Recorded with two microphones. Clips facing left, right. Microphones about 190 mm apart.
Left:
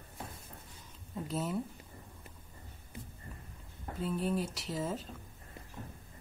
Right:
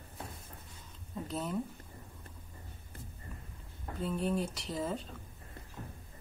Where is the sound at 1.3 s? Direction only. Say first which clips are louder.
Left 1 dB; 5° left (ahead or behind).